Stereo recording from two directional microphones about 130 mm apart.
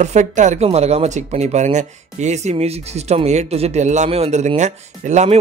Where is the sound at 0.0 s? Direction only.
65° right (ahead or behind).